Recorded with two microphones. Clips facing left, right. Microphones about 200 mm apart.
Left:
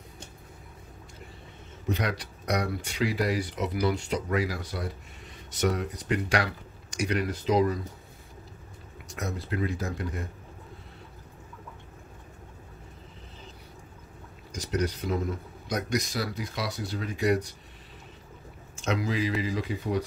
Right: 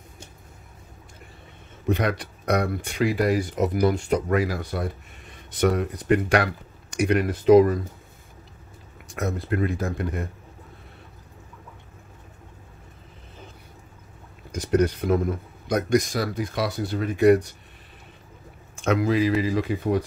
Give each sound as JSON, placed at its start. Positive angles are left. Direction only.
{"t": 1.9, "sound": "speech", "side_deg": -55}
{"t": 9.1, "sound": "speech", "side_deg": -55}
{"t": 14.5, "sound": "speech", "side_deg": -55}
{"t": 18.8, "sound": "speech", "side_deg": -55}